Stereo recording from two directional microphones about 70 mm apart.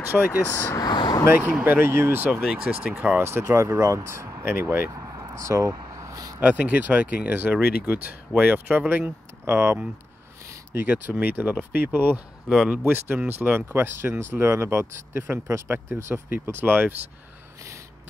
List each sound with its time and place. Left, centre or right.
0.1 s speech: centre
0.7 s speech: left
1.3 s speech: right
2.5 s speech: centre
3.2 s speech: right
5.3 s vehicle: right
6.4 s speech: right